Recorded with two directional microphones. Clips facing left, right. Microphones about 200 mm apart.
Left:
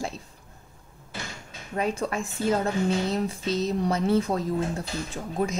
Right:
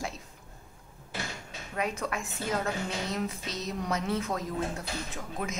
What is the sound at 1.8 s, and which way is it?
A woman's voice, 30° left (ahead or behind).